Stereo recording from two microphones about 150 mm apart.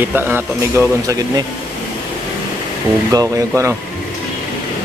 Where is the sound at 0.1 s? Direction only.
15° right (ahead or behind).